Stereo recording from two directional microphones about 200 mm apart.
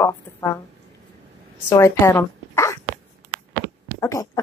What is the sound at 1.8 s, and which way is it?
Dog, 15° left (ahead or behind).